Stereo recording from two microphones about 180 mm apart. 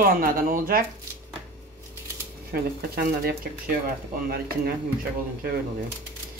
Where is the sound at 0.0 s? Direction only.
50° right (ahead or behind).